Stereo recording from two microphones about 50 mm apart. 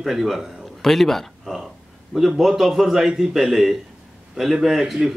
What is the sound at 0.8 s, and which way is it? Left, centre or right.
Speech, centre.